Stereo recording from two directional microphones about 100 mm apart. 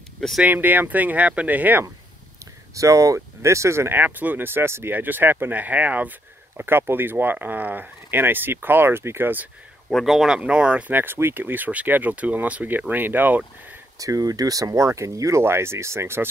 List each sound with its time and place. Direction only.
0.4 s speech: 15° right (ahead or behind)
2.7 s speech: 30° right (ahead or behind)
9.8 s speech: centre (ahead or behind); by 13.4 s 20° right (ahead or behind)
13.9 s speech: 35° right (ahead or behind)